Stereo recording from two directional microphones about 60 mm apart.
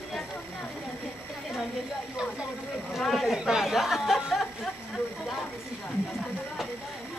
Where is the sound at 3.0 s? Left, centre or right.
Centre.